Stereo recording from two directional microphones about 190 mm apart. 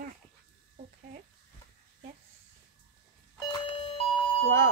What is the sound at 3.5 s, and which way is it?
Doorbell, 25° left (ahead or behind).